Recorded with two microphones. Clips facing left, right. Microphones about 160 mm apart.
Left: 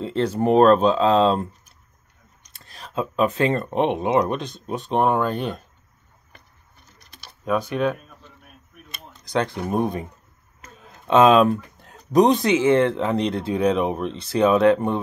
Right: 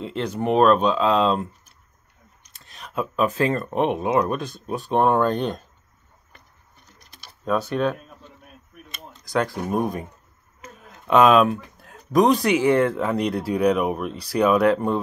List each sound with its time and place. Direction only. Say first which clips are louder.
0.0 s speech: left 4 dB; 35° left (ahead or behind)
2.4 s a sound: left 1 dB; 35° left (ahead or behind)
2.9 s speech: left 1 dB; 25° left (ahead or behind); by 5.6 s 10° left (ahead or behind)
7.4 s speech: even; 10° left (ahead or behind)
9.2 s speech: even; 20° left (ahead or behind)
11.1 s speech: left 1 dB; 25° left (ahead or behind)